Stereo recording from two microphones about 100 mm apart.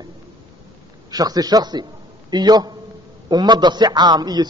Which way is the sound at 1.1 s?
40° right (ahead or behind).